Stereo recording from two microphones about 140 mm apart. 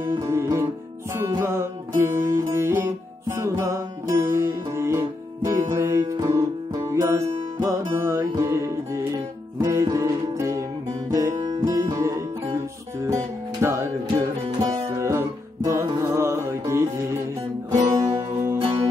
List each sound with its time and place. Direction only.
0.0 s music: 25° right (ahead or behind)
14.1 s music: 30° right (ahead or behind)
17.8 s music: 25° right (ahead or behind)